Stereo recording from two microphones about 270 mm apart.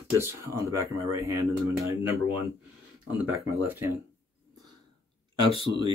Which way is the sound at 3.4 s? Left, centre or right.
Centre.